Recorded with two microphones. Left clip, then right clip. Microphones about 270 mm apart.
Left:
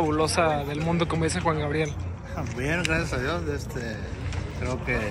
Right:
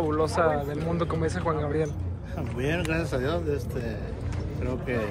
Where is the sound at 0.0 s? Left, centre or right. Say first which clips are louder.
Left 1 dB; centre.